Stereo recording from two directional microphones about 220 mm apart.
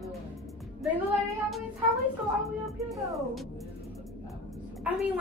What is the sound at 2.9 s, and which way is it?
Speech, centre (ahead or behind).